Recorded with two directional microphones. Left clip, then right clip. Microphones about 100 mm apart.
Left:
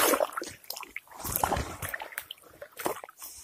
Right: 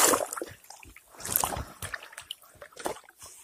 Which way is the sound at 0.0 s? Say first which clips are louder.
Even; centre (ahead or behind).